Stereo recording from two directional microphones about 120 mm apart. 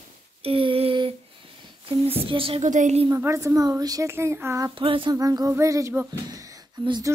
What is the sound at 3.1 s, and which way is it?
Speech, 25° right (ahead or behind).